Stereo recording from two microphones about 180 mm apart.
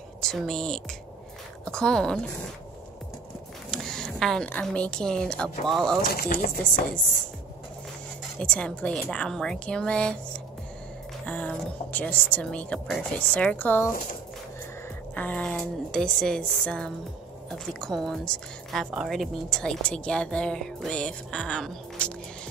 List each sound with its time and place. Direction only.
0.2 s a woman's voice: 5° left (ahead or behind)
3.7 s speech: centre (ahead or behind)
6.0 s speech: 55° left (ahead or behind)
8.4 s a woman's voice: 5° left (ahead or behind)
15.1 s a woman's voice: 10° left (ahead or behind)